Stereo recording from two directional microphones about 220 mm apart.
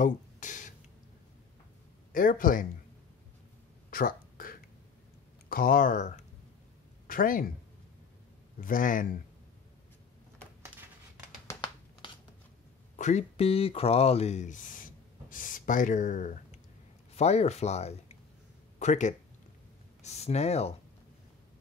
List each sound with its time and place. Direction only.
0.0 s a sound: 35° left (ahead or behind)
2.1 s speech: 40° left (ahead or behind)
3.9 s a sound: 40° left (ahead or behind)
5.5 s speech: 40° left (ahead or behind)
8.5 s speech: 40° left (ahead or behind)
11.4 s crumpling: 20° left (ahead or behind)
12.9 s speech: 35° left (ahead or behind)